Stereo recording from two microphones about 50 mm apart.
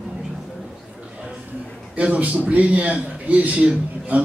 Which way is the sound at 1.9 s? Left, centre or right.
Right.